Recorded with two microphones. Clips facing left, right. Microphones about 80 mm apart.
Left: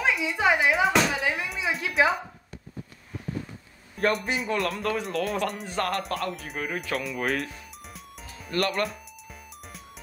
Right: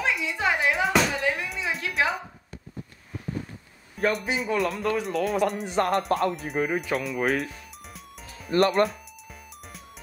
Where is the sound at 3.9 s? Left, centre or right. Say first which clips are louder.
Even; centre.